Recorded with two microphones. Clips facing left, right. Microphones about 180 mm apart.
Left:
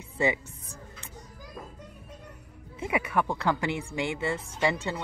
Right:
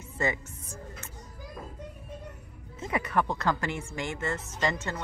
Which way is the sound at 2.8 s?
10° left (ahead or behind).